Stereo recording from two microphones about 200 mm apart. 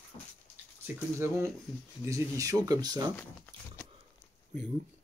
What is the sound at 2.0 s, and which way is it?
Speech, 15° right (ahead or behind).